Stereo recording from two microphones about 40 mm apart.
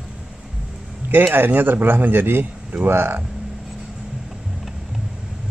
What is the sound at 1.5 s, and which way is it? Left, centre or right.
Speech, right.